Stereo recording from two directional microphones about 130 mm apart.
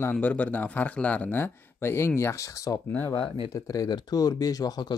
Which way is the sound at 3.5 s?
25° left (ahead or behind).